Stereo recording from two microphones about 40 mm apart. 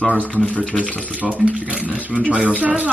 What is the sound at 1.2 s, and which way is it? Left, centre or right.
Speech, right.